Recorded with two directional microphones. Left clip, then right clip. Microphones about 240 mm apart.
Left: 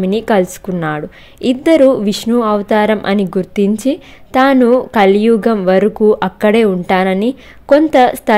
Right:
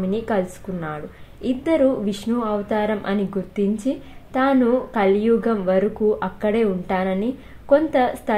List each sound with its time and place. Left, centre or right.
0.0 s a woman's voice: left